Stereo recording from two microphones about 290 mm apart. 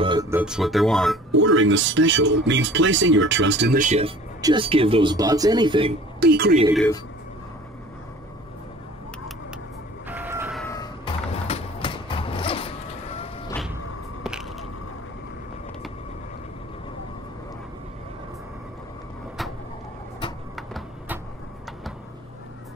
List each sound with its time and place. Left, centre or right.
0.0 s speech: centre
1.4 s a man's voice: right; by 5.9 s centre
6.1 s speech: right
10.0 s vehicle: centre
10.6 s vehicle: centre
14.2 s a sound: centre
20.5 s a sound: centre